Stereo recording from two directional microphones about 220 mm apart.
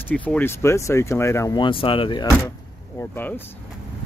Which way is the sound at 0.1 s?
5° left (ahead or behind).